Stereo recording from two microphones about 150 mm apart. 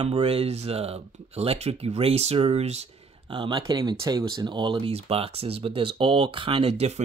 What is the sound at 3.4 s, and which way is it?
Speech, 30° right (ahead or behind).